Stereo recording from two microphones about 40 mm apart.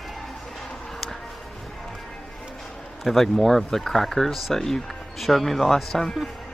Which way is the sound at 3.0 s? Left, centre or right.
Centre.